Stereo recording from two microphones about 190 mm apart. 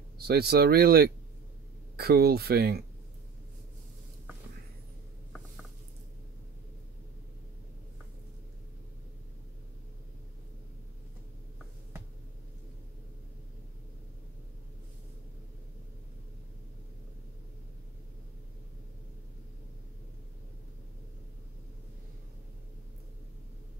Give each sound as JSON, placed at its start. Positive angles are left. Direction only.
{"t": 0.3, "sound": "speech", "side_deg": -55}